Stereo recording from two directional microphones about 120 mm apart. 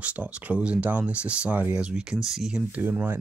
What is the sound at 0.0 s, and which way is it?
Speech, 10° right (ahead or behind).